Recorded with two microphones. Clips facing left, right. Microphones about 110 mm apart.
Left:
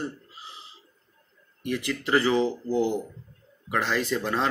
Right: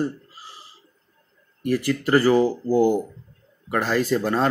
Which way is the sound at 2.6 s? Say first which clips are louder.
Right 6 dB; 40° right (ahead or behind).